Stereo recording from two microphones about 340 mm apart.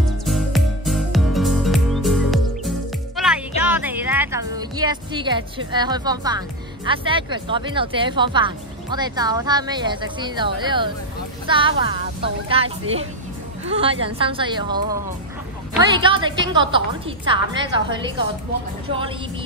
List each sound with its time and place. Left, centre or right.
0.2 s music: centre
5.7 s speech: centre